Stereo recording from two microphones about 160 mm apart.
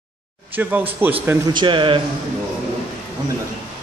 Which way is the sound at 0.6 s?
10° right (ahead or behind).